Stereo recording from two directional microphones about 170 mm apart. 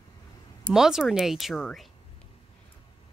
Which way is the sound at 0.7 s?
5° right (ahead or behind).